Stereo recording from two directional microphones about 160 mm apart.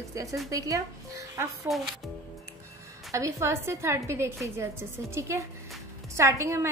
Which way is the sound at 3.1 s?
20° right (ahead or behind).